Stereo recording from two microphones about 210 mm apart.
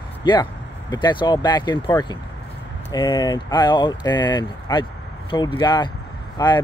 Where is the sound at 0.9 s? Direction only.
20° left (ahead or behind).